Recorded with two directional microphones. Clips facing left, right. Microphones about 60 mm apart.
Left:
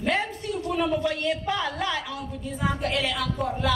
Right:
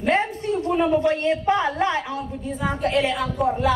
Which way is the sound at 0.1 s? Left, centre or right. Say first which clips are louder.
Right 7 dB; right.